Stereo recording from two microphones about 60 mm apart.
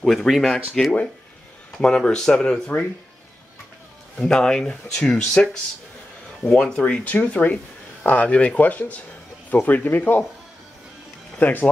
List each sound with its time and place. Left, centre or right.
0.0 s speech: centre
4.2 s speech: centre; by 10.2 s left
11.3 s speech: left